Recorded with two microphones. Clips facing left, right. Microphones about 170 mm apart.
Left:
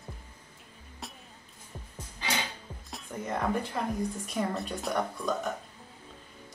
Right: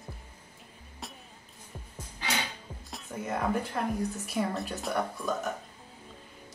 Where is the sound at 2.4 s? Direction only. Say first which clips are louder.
Even; centre (ahead or behind).